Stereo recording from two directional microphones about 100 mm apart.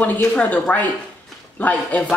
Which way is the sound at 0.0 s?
15° left (ahead or behind).